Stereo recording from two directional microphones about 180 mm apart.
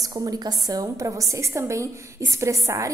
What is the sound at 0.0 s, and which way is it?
A woman's voice, 20° right (ahead or behind).